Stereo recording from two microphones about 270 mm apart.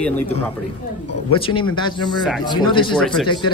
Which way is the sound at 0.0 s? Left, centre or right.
Centre.